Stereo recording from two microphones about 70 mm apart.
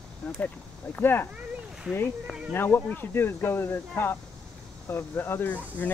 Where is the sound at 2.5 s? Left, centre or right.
Left.